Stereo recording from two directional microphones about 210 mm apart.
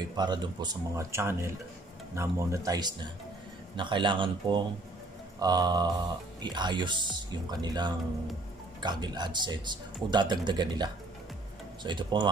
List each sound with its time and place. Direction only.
0.1 s speech: 20° right (ahead or behind)